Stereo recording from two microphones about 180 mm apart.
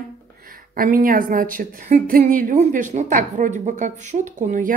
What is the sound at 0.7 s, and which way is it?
A woman's voice, 50° right (ahead or behind).